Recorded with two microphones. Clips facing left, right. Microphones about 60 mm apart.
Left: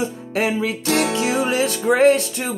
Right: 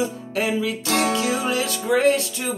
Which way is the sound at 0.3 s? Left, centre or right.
Left.